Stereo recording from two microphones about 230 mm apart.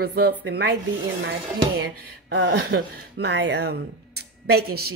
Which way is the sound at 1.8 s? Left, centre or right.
Right.